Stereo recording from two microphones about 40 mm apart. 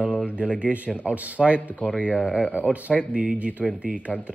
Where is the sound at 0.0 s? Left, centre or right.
Right.